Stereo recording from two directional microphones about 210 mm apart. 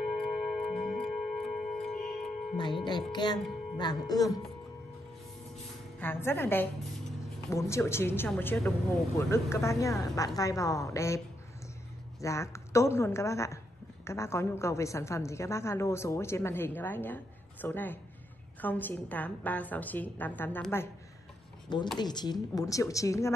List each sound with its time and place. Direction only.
0.2 s clock: centre (ahead or behind)
2.5 s music: 20° left (ahead or behind)
5.9 s a woman's voice: 10° left (ahead or behind)
12.2 s a woman's voice: 15° left (ahead or behind)
21.9 s a woman's voice: 20° left (ahead or behind)